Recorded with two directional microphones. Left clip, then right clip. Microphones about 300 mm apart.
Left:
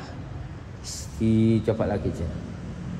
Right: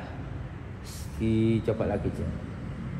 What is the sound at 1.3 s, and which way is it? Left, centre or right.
Speech, left.